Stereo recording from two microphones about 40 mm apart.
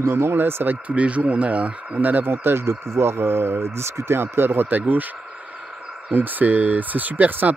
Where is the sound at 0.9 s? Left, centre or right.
Right.